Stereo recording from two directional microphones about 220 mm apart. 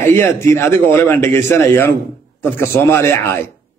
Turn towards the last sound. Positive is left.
turn(degrees=10)  # may be behind; listen again after turning